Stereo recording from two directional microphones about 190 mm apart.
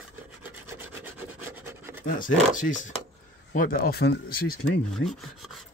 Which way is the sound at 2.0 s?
45° left (ahead or behind).